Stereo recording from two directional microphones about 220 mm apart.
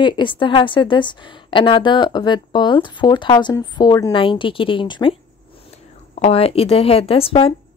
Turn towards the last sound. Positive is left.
turn(degrees=25)  # may be behind; listen again after turning